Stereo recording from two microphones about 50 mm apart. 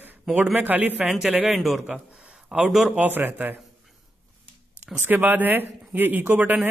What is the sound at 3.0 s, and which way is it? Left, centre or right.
Speech, right.